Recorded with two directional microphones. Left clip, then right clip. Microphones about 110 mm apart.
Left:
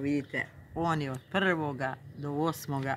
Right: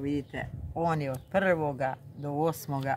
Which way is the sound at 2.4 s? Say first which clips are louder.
Right 2 dB; 90° right.